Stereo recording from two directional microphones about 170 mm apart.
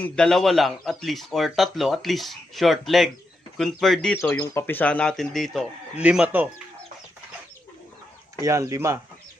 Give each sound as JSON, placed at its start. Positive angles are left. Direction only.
{"t": 0.0, "sound": "speech", "side_deg": 5}
{"t": 8.4, "sound": "speech", "side_deg": -20}